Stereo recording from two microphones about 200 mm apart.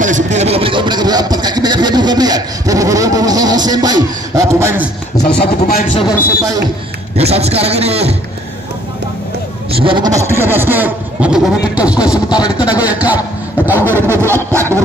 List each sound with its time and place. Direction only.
0.0 s speech: 35° right (ahead or behind); by 4.8 s 15° right (ahead or behind)
5.2 s speech: 55° left (ahead or behind)
7.2 s a man's voice: 30° right (ahead or behind)
9.7 s a man's voice: 25° right (ahead or behind)